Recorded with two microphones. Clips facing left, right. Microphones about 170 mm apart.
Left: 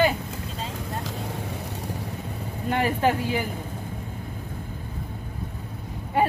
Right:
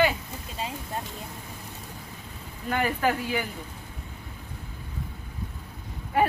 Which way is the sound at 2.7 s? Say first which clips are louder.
Left 3 dB; 30° left (ahead or behind).